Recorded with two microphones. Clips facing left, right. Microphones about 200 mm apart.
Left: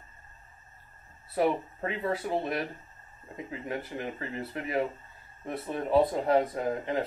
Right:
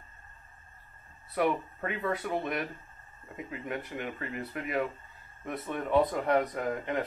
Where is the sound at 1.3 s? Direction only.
30° left (ahead or behind).